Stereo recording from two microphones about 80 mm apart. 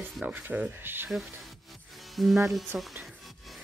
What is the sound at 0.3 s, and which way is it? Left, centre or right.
Speech, right.